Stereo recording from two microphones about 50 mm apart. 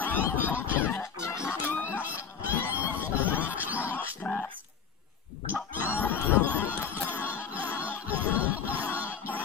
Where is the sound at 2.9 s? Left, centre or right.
Right.